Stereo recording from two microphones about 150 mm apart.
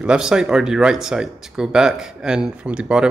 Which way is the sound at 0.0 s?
5° right (ahead or behind).